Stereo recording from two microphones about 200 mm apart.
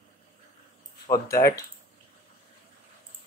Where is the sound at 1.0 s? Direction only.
15° left (ahead or behind).